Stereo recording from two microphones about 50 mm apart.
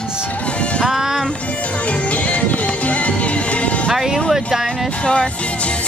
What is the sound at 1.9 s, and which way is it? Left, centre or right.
Music, left.